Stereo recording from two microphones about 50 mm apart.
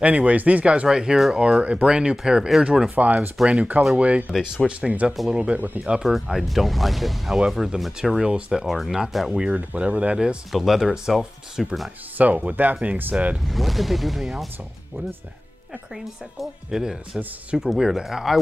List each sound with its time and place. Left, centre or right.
0.0 s speech: right
0.8 s speech: centre
3.0 s speech: right
3.4 s speech: right
6.4 s speech: centre
7.3 s speech: centre
9.3 s speech: right
10.5 s speech: centre
12.2 s speech: right
13.1 s speech: right
13.5 s speech: centre
16.3 s speech: centre